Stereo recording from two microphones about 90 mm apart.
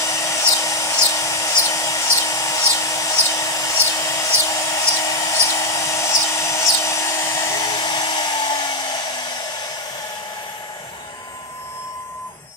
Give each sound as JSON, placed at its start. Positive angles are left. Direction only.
{"t": 0.0, "sound": "hair dryer", "side_deg": 35}
{"t": 7.7, "sound": "hair dryer", "side_deg": 50}